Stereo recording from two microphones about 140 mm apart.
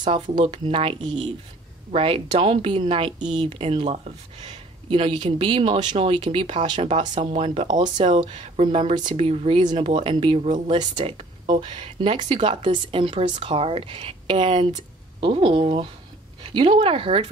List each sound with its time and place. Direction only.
0.0 s speech: 35° right (ahead or behind); by 5.0 s 50° right (ahead or behind)
5.0 s speech: 35° right (ahead or behind)
9.1 s speech: 45° right (ahead or behind)
9.6 s speech: 30° right (ahead or behind)
9.8 s speech: 45° right (ahead or behind)